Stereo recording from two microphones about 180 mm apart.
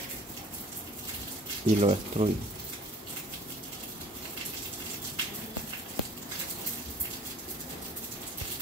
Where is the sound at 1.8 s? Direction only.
35° right (ahead or behind).